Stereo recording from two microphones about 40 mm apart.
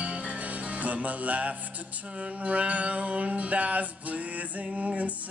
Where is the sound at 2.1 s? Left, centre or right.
Right.